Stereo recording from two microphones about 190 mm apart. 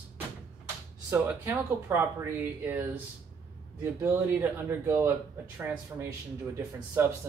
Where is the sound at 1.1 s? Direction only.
10° right (ahead or behind).